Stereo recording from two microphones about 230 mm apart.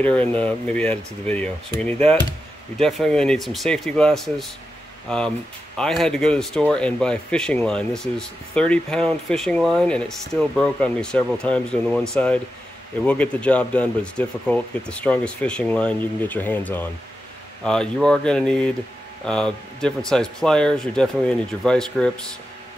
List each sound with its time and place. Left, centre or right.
0.0 s speech: centre